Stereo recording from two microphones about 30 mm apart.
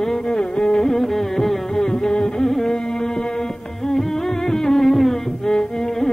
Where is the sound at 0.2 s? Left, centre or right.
Left.